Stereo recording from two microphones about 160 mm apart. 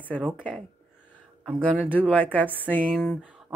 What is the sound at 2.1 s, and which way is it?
Speech, 10° left (ahead or behind).